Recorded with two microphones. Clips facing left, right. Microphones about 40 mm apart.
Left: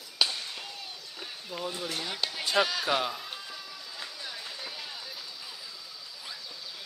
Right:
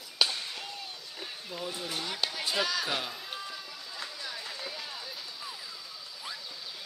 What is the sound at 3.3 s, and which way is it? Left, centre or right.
Run, centre.